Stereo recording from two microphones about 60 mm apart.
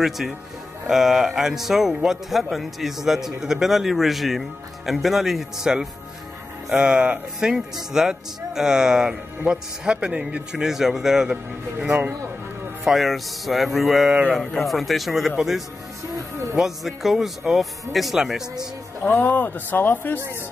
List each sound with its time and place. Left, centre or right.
0.8 s speech: centre
7.3 s speech: centre
10.6 s speech: centre
12.8 s speech: centre
19.0 s speech: left